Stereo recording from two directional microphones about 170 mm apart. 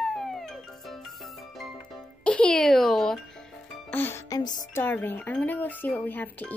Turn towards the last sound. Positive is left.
turn(degrees=10)  # may be behind; listen again after turning